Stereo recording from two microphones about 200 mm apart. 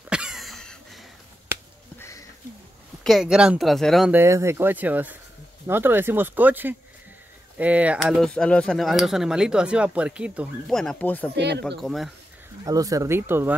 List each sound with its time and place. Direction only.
0.1 s cough: 5° right (ahead or behind)
2.0 s a sound: 15° left (ahead or behind)
3.0 s speech: centre (ahead or behind)
4.2 s speech: 15° right (ahead or behind); by 11.3 s 10° left (ahead or behind)
11.3 s speech: 55° right (ahead or behind)
11.8 s speech: centre (ahead or behind)
12.6 s speech: 15° right (ahead or behind)